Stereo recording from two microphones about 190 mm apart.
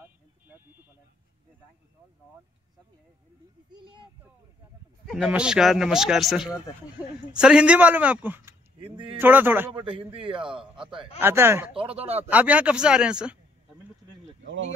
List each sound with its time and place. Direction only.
3.7 s a man's voice: 25° right (ahead or behind)
5.0 s speech: centre (ahead or behind)
8.8 s a man's voice: 25° right (ahead or behind)
9.2 s speech: 10° right (ahead or behind)
9.7 s a man's voice: 25° right (ahead or behind)
11.1 s speech: 10° right (ahead or behind)